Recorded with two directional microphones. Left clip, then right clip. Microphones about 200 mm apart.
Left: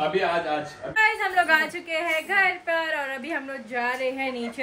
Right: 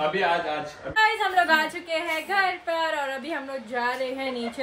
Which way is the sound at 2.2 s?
15° right (ahead or behind).